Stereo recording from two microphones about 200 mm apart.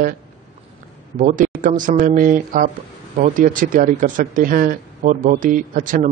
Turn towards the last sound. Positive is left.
turn(degrees=-40)  # may be behind; listen again after turning